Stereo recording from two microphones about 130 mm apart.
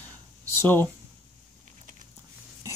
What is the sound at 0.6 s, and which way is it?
Speech, 15° left (ahead or behind).